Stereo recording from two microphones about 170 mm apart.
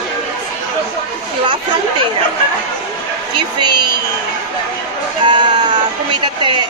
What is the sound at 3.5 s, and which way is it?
Speech, 25° right (ahead or behind).